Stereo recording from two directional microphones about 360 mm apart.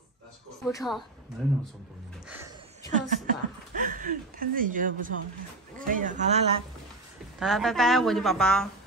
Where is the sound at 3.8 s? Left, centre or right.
Right.